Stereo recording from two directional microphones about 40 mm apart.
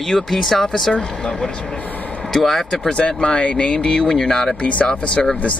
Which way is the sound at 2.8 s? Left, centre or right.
Left.